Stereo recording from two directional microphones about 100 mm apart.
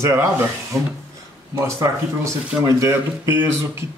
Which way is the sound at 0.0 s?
30° right (ahead or behind).